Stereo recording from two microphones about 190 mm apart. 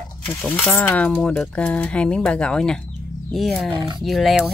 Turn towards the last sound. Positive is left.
turn(degrees=0)  # may be behind; listen again after turning